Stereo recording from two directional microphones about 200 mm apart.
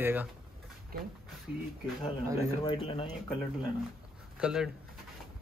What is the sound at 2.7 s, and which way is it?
Speech, 25° left (ahead or behind).